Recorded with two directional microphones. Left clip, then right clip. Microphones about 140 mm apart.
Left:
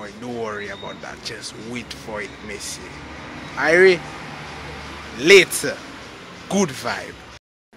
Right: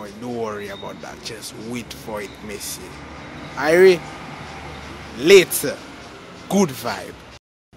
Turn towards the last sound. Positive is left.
turn(degrees=-25)  # may be behind; listen again after turning